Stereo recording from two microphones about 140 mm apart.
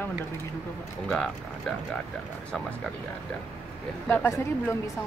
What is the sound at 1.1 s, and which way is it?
Speech, 5° left (ahead or behind).